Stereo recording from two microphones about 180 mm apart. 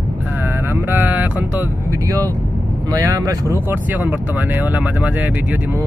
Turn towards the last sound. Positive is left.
turn(degrees=-10)  # may be behind; listen again after turning